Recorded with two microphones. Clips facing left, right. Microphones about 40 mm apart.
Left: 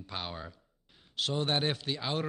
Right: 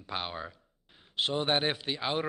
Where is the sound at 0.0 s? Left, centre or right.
Centre.